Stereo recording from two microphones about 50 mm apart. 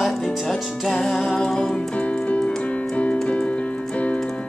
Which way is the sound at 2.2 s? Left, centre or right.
Left.